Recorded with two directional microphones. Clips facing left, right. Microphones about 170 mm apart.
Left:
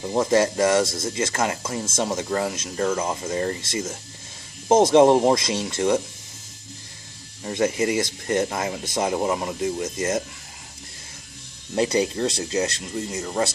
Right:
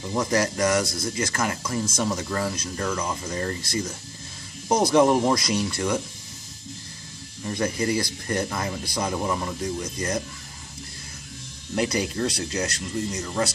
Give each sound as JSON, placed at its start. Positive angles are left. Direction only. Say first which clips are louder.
{"t": 0.0, "sound": "speech", "louder": "left 4 dB", "side_deg": 30}
{"t": 7.4, "sound": "speech", "louder": "left 3 dB", "side_deg": 20}
{"t": 11.7, "sound": "speech", "louder": "left 4 dB", "side_deg": 25}